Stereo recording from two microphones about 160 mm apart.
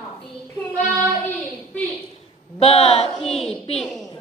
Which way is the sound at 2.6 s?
40° left (ahead or behind).